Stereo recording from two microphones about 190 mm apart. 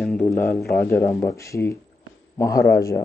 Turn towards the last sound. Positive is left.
turn(degrees=15)  # may be behind; listen again after turning